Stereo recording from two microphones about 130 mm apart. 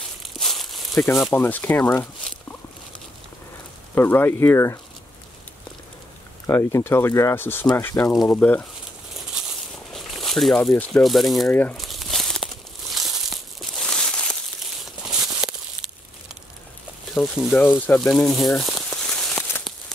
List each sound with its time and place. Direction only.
0.2 s crumpling: centre (ahead or behind)
1.3 s speech: 15° left (ahead or behind)
3.9 s speech: 15° left (ahead or behind)
6.4 s speech: 20° left (ahead or behind)
9.9 s speech: centre (ahead or behind)
11.7 s crumpling: centre (ahead or behind)
15.0 s a sound: 5° right (ahead or behind)
17.1 s speech: centre (ahead or behind)
17.6 s speech: 15° left (ahead or behind)